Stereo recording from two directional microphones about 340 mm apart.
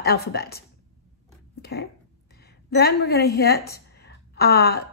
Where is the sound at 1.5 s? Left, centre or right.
Left.